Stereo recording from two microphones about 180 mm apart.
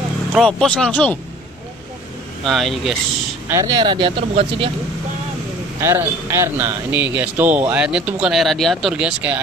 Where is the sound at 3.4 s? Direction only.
20° right (ahead or behind).